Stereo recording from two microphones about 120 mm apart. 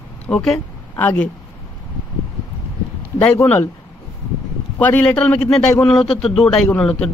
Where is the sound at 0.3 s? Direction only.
5° left (ahead or behind).